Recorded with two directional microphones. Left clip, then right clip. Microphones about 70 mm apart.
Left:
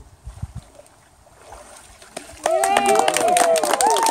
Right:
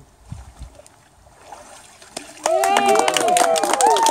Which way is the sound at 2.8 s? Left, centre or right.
Right.